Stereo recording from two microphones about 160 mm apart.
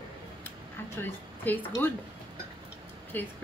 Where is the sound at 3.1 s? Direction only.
10° left (ahead or behind).